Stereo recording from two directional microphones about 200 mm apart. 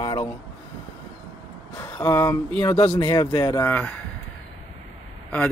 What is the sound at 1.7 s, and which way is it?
Speech, 15° left (ahead or behind).